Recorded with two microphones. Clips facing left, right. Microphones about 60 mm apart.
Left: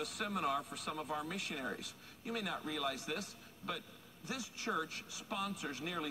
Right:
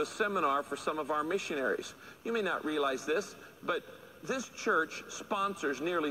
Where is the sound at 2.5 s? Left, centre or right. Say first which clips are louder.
Right 8 dB; right.